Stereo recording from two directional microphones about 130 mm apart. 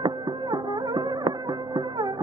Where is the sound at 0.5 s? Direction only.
35° right (ahead or behind).